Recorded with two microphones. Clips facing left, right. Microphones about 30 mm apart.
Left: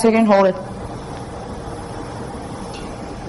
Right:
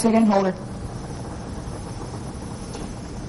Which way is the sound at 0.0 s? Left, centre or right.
Left.